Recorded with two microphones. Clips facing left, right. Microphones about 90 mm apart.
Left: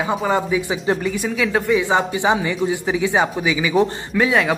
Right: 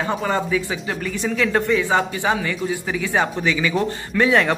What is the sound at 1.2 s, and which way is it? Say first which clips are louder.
A man's voice: even; 10° left (ahead or behind).